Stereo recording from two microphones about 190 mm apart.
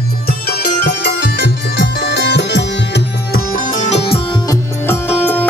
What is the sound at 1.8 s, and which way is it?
Music, 65° left (ahead or behind).